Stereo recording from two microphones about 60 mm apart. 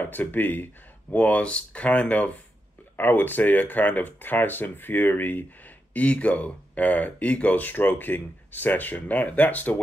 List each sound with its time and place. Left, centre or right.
0.0 s speech: left
1.1 s speech: left
3.0 s speech: left